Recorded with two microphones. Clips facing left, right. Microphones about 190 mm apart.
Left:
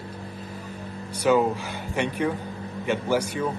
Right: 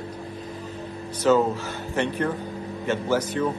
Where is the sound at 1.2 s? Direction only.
15° left (ahead or behind).